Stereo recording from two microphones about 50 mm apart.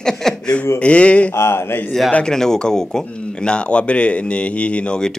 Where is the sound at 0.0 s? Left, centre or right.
Centre.